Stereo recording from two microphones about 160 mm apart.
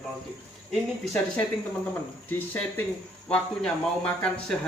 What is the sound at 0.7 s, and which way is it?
Speech, 5° left (ahead or behind).